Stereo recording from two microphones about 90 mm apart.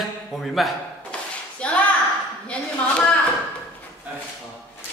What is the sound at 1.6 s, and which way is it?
Speech, 15° left (ahead or behind).